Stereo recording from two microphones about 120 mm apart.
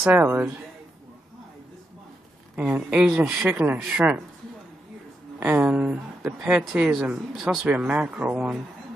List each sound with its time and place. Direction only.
0.0 s speech: 20° right (ahead or behind)
2.5 s speech: 10° right (ahead or behind)
5.4 s speech: 15° right (ahead or behind)